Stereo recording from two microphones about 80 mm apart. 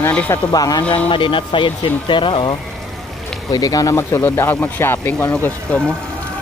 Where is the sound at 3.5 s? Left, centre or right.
Left.